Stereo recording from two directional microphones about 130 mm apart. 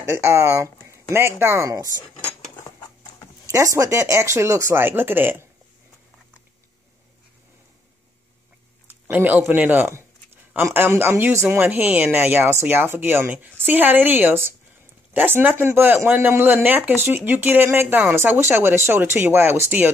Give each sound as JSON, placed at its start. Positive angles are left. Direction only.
{"t": 0.0, "sound": "speech", "side_deg": -20}
{"t": 0.8, "sound": "a sound", "side_deg": -20}
{"t": 1.4, "sound": "speech", "side_deg": -20}
{"t": 3.4, "sound": "speech", "side_deg": -25}
{"t": 8.8, "sound": "speech", "side_deg": -15}